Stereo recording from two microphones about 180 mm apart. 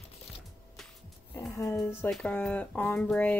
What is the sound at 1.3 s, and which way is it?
Speech, 15° left (ahead or behind).